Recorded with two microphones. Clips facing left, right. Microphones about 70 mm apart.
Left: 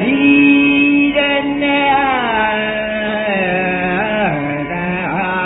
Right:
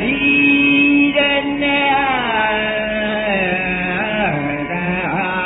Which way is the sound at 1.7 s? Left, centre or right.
Left.